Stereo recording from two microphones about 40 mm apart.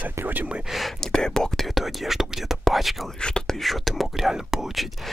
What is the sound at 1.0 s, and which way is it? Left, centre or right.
Speech, centre.